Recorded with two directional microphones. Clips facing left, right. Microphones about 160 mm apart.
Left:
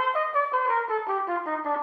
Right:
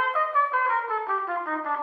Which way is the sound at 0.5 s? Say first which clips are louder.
Left 1 dB; 15° left (ahead or behind).